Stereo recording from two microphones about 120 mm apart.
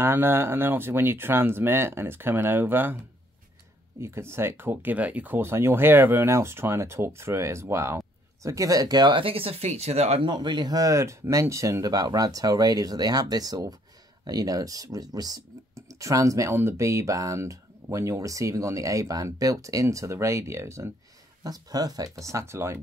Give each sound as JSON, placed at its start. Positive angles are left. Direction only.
{"t": 0.0, "sound": "speech", "side_deg": -20}
{"t": 4.0, "sound": "speech", "side_deg": -20}
{"t": 10.2, "sound": "speech", "side_deg": -40}